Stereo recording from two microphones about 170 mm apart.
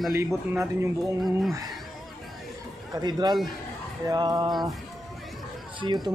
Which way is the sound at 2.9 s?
25° right (ahead or behind).